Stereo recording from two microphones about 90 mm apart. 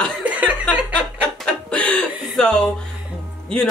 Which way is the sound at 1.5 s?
10° left (ahead or behind).